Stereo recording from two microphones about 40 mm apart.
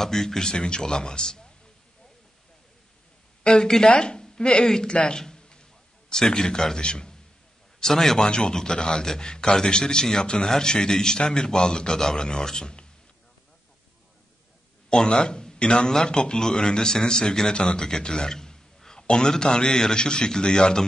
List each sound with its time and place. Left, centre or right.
0.0 s a man's voice: centre
3.4 s a man's voice: centre
5.2 s a sound: centre
7.8 s a man's voice: centre
14.9 s a man's voice: centre